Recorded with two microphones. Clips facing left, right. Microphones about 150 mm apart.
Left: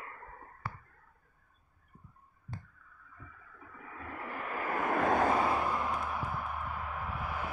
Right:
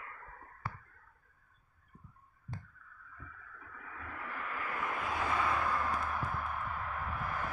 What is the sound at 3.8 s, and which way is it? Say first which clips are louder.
Vehicle: left 3 dB; 25° left (ahead or behind).